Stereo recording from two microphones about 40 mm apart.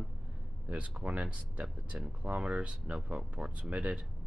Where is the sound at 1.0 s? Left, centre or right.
Right.